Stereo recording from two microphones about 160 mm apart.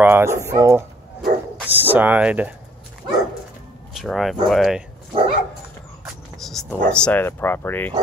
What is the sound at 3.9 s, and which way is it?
Speech, centre (ahead or behind).